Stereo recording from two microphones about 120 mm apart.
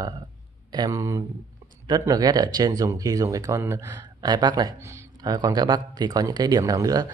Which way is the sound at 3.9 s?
35° right (ahead or behind).